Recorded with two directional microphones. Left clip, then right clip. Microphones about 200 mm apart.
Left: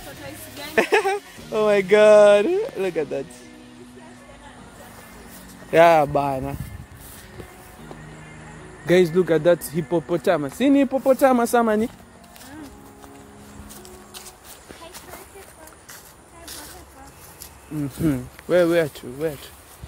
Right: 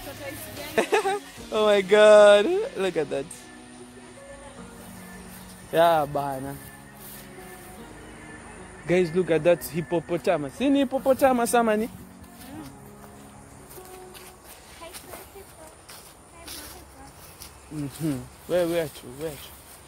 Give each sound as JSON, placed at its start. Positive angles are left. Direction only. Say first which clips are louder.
{"t": 0.6, "sound": "speech", "louder": "left 4 dB", "side_deg": 10}
{"t": 5.7, "sound": "speech", "louder": "left 6 dB", "side_deg": 35}
{"t": 8.8, "sound": "speech", "louder": "left 5 dB", "side_deg": 30}
{"t": 18.0, "sound": "speech", "louder": "left 8 dB", "side_deg": 45}